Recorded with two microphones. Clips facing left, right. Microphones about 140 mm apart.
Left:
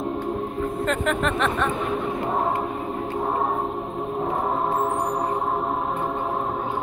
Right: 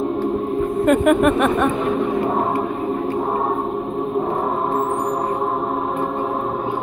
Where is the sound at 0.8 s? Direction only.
10° right (ahead or behind).